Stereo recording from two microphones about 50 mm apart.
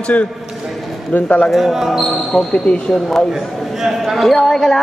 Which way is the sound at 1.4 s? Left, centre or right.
Centre.